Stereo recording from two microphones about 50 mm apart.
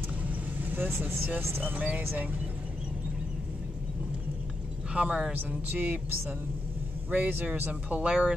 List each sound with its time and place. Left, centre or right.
0.3 s speech: right
1.8 s speech: right
4.9 s speech: right
5.3 s speech: right
8.0 s speech: right